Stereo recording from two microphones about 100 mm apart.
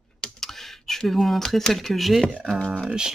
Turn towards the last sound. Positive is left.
turn(degrees=-10)  # may be behind; listen again after turning